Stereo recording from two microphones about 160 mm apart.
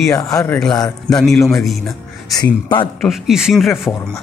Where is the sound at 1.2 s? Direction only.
Centre (ahead or behind).